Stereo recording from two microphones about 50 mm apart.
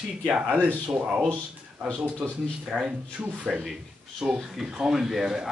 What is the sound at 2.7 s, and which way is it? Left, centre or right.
Speech, centre.